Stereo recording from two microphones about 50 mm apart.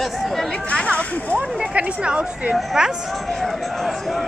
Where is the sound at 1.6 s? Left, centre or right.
Right.